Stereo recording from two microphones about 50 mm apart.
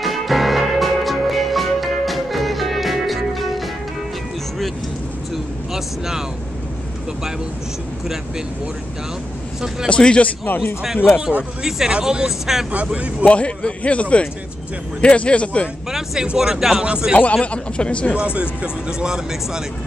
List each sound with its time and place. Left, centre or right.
0.0 s music: centre
5.3 s vehicle: centre
9.8 s a man's voice: left
10.4 s a man's voice: left
11.6 s speech: centre
12.7 s speech: right
13.2 s a man's voice: left
15.9 s speech: centre
17.2 s a man's voice: left
18.1 s speech: right